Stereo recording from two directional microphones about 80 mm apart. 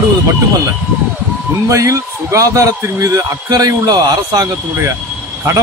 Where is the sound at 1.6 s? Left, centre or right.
Right.